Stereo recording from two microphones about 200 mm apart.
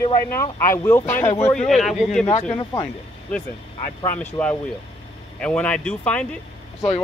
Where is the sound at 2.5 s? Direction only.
25° left (ahead or behind).